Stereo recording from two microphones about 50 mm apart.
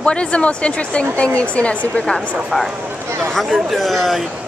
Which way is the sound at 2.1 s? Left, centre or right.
Centre.